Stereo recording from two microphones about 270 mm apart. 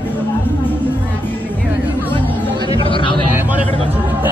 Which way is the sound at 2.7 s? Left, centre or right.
Centre.